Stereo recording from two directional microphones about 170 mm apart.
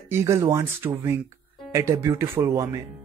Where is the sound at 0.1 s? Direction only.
15° right (ahead or behind).